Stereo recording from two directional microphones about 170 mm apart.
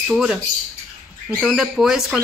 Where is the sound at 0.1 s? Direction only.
5° right (ahead or behind).